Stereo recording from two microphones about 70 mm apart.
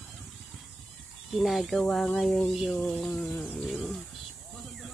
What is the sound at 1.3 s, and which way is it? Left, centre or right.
Speech, centre.